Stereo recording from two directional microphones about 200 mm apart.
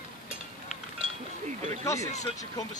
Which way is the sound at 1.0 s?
35° right (ahead or behind).